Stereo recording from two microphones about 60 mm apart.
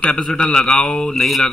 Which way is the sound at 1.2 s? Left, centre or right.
Centre.